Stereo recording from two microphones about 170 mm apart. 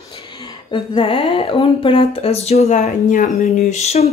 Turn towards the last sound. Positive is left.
turn(degrees=40)  # may be behind; listen again after turning